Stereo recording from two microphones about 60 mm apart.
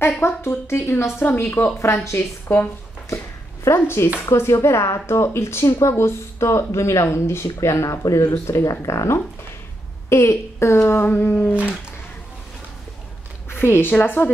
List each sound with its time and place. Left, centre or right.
0.0 s a woman's voice: left
2.4 s a woman's voice: left
3.6 s a woman's voice: left
13.5 s a woman's voice: left